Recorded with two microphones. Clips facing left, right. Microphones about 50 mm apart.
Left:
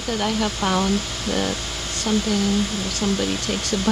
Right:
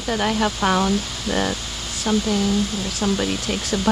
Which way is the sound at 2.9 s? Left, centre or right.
Centre.